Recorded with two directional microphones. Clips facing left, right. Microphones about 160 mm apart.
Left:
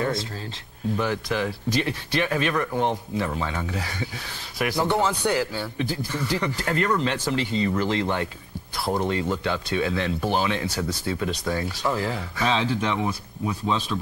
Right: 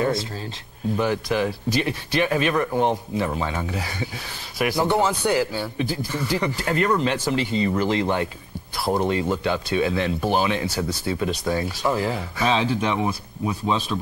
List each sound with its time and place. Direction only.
0.9 s a man's voice: 20° right (ahead or behind)